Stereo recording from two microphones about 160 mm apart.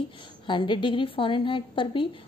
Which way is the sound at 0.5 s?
30° left (ahead or behind).